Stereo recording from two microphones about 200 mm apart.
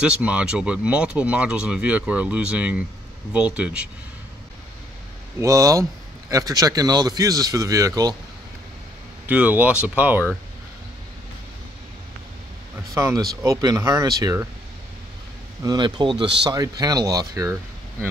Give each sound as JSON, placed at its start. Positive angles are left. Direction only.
{"t": 0.0, "sound": "speech", "side_deg": -5}
{"t": 5.4, "sound": "a man's voice", "side_deg": -15}
{"t": 9.2, "sound": "a man's voice", "side_deg": -10}
{"t": 12.9, "sound": "a man's voice", "side_deg": -15}
{"t": 15.6, "sound": "speech", "side_deg": -20}